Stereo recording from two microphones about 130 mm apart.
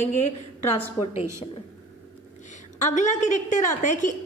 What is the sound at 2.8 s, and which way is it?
A woman's voice, 75° left (ahead or behind).